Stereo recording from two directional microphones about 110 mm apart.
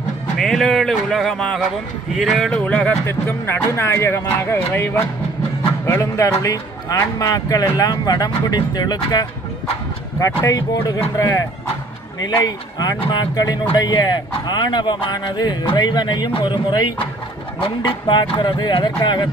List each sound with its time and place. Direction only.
0.4 s speech: 5° left (ahead or behind)
3.1 s a man's voice: 20° left (ahead or behind); by 9.3 s 40° left (ahead or behind)
10.1 s a man's voice: 30° left (ahead or behind); by 19.2 s 45° left (ahead or behind)